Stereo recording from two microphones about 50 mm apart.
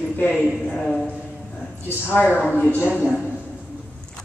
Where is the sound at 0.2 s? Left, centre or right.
Left.